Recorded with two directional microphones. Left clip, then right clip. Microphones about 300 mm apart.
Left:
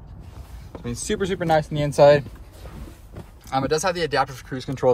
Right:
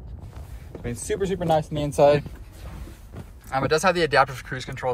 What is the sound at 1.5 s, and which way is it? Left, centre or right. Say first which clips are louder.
Speech: left 3 dB; left.